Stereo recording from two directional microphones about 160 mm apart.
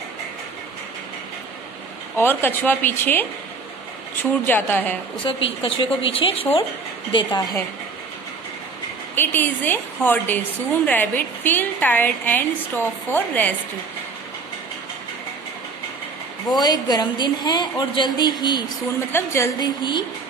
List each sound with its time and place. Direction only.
2.1 s a woman's voice: 15° left (ahead or behind)
5.2 s a woman's voice: 35° left (ahead or behind)
9.1 s a woman's voice: 15° left (ahead or behind)
16.5 s a woman's voice: 25° left (ahead or behind)
19.1 s a woman's voice: 15° left (ahead or behind)
19.6 s a woman's voice: 30° left (ahead or behind)